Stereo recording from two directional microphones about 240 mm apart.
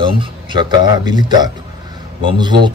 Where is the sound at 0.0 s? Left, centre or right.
Centre.